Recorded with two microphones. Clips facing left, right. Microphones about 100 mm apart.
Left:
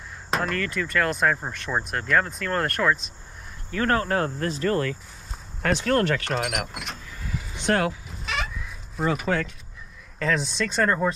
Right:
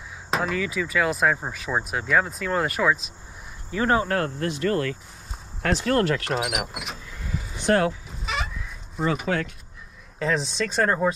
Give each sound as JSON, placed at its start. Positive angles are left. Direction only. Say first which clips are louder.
{"t": 0.3, "sound": "speech", "louder": "right 1 dB", "side_deg": -5}
{"t": 4.4, "sound": "speech", "louder": "even", "side_deg": 35}
{"t": 5.8, "sound": "speech", "louder": "right 1 dB", "side_deg": -5}
{"t": 7.6, "sound": "speech", "louder": "right 2 dB", "side_deg": -30}
{"t": 8.2, "sound": "chicken", "louder": "even", "side_deg": 0}
{"t": 8.9, "sound": "speech", "louder": "even", "side_deg": 0}